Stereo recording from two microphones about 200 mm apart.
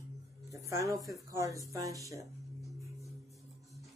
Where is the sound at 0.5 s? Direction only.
15° right (ahead or behind).